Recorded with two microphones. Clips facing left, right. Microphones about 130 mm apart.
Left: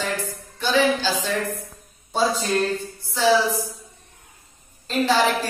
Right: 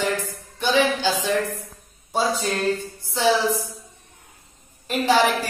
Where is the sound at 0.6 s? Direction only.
20° right (ahead or behind).